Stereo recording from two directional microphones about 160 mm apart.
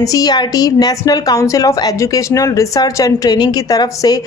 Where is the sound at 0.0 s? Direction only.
25° left (ahead or behind).